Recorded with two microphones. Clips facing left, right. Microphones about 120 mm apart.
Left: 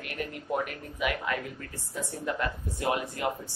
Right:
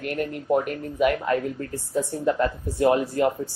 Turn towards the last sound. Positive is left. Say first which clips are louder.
# right 9 dB
turn(degrees=-35)  # may be behind; listen again after turning